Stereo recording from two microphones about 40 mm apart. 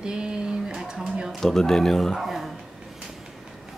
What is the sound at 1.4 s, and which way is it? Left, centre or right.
Speech, centre.